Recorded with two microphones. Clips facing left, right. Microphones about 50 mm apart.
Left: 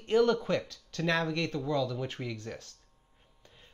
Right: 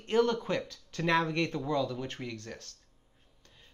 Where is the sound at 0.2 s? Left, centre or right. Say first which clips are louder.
Left 1 dB; centre.